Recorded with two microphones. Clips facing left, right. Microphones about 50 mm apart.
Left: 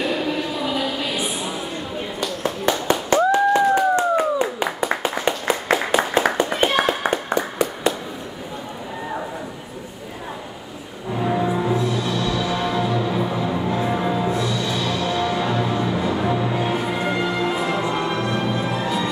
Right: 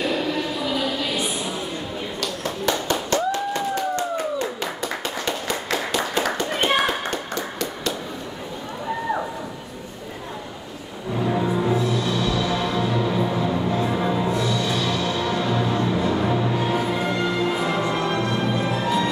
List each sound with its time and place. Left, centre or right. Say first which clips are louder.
0.0 s a sound: left 1 dB; centre
2.9 s clapping: left 9 dB; centre
7.0 s clapping: left 5 dB; left
11.1 s music: left 1 dB; centre